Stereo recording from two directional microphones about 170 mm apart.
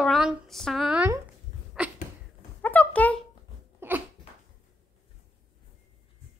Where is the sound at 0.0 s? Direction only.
Centre (ahead or behind).